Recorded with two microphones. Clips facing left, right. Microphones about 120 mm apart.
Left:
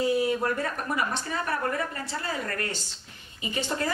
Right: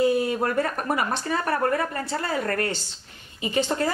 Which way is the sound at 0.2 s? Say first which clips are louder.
Right 2 dB; 55° right (ahead or behind).